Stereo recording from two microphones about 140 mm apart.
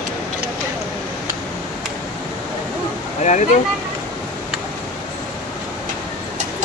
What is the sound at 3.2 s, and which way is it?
Speech, 60° left (ahead or behind).